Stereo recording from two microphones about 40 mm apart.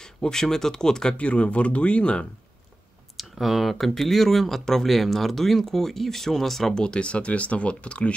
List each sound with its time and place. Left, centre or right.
0.0 s speech: centre
1.1 s speech: left
3.2 s speech: centre
6.7 s speech: left